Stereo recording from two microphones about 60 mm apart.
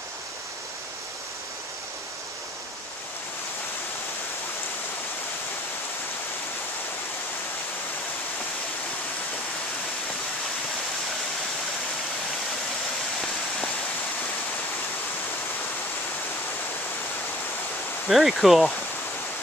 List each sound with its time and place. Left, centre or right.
18.0 s speech: centre